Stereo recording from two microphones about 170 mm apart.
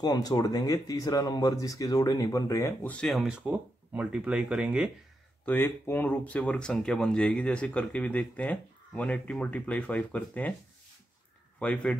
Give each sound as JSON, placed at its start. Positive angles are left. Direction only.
{"t": 0.0, "sound": "speech", "side_deg": 20}
{"t": 5.4, "sound": "speech", "side_deg": 10}
{"t": 11.6, "sound": "speech", "side_deg": 5}